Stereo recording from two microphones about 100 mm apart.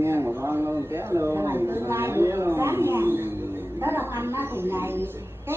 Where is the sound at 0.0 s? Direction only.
25° right (ahead or behind).